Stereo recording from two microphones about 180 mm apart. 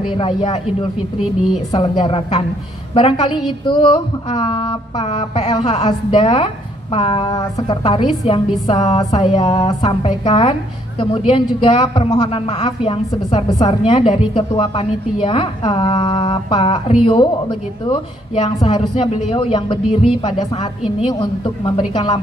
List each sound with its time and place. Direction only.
0.1 s speech: 25° left (ahead or behind)
1.7 s a woman's voice: 25° left (ahead or behind)
8.6 s music: 40° left (ahead or behind)
8.9 s speech: 25° left (ahead or behind)